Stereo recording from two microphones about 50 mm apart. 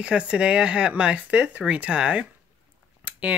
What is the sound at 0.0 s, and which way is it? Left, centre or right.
Speech, right.